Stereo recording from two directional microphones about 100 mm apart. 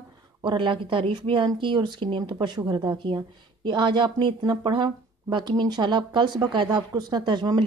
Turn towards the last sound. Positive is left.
turn(degrees=-50)  # may be behind; listen again after turning